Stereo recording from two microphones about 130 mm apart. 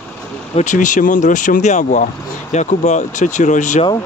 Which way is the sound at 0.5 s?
70° left (ahead or behind).